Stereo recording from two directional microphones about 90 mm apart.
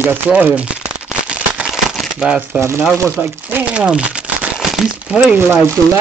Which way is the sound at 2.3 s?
20° right (ahead or behind).